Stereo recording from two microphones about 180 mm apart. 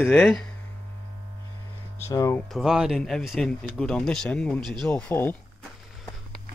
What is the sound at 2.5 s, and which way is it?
Speech, 5° right (ahead or behind).